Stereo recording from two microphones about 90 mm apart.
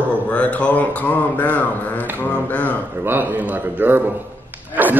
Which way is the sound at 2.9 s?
20° right (ahead or behind).